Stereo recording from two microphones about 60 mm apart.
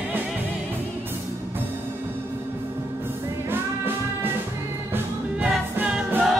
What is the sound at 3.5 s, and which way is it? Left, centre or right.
Music, right.